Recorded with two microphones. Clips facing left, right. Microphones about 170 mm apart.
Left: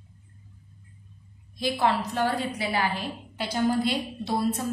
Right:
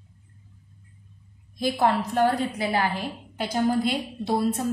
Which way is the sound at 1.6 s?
45° right (ahead or behind).